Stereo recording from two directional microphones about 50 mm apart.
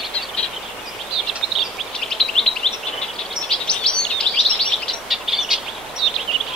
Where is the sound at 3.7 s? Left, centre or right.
Centre.